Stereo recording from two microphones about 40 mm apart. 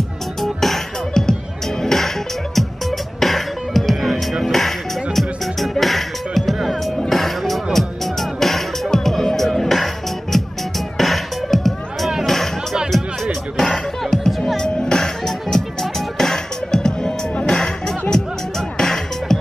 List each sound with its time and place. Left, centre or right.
0.4 s music: centre
11.0 s music: centre